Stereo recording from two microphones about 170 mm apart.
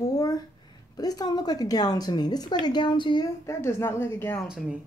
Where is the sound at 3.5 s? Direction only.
15° left (ahead or behind).